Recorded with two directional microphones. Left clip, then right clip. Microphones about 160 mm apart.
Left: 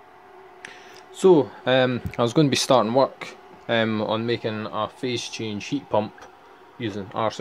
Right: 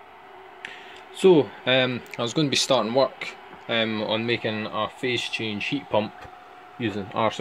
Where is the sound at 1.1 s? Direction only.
5° left (ahead or behind); by 4.1 s 25° left (ahead or behind).